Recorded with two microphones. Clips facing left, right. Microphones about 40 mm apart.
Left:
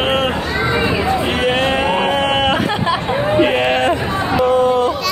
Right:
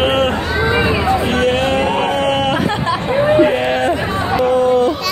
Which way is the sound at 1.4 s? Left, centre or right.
Centre.